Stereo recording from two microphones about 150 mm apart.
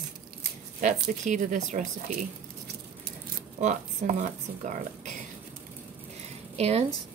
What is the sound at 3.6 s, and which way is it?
Speech, 55° right (ahead or behind).